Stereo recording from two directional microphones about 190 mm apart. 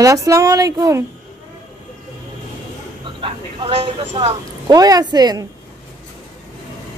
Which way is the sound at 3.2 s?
30° right (ahead or behind).